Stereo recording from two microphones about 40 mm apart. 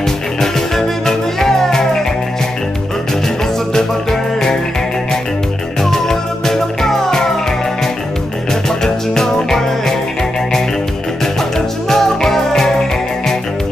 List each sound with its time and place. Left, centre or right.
0.4 s music: centre
3.7 s music: centre
5.8 s music: centre
8.6 s music: centre
11.3 s music: centre